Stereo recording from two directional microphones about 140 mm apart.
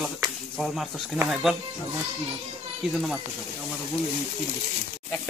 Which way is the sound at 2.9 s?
Centre (ahead or behind).